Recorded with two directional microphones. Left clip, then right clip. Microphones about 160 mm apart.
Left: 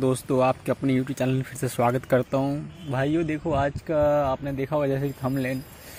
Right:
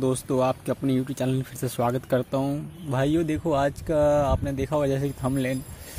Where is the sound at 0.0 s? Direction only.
Centre (ahead or behind).